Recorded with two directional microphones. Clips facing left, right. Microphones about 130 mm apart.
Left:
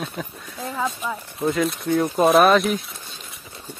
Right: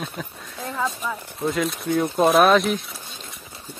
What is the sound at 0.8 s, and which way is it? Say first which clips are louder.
Speech: even; 10° left (ahead or behind).